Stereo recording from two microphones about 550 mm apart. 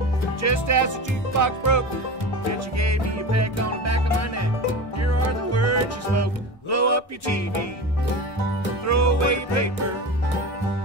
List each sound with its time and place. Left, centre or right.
0.4 s music: right
8.8 s music: right